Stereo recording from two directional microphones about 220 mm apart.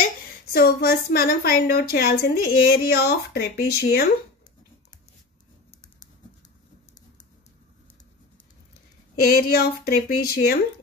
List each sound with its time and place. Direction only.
0.5 s a woman's voice: 45° left (ahead or behind)
9.1 s a woman's voice: 45° left (ahead or behind)